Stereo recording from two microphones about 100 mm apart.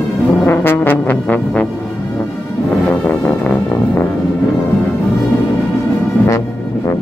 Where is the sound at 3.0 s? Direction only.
15° left (ahead or behind).